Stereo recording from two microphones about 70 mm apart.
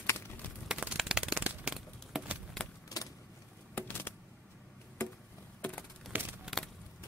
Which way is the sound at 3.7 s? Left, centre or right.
Left.